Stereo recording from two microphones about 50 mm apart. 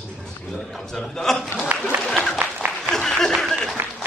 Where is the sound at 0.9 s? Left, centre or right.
Centre.